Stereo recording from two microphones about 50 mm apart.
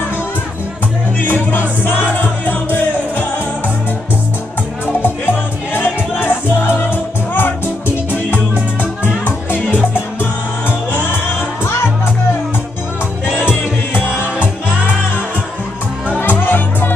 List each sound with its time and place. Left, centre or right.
1.2 s music: left
5.0 s music: left
10.9 s music: left
16.2 s music: left